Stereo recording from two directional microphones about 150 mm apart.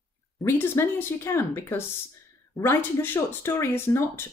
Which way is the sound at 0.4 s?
15° left (ahead or behind).